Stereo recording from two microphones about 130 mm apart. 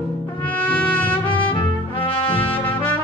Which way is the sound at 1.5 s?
45° left (ahead or behind).